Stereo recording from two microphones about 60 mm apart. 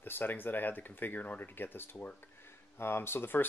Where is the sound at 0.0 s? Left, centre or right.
Left.